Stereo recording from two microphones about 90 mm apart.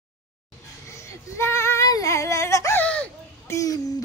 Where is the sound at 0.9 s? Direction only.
30° left (ahead or behind).